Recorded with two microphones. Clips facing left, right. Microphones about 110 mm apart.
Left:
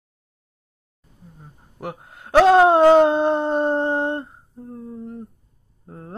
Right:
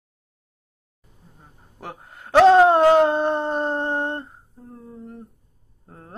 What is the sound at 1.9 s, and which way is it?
Speech, 10° left (ahead or behind).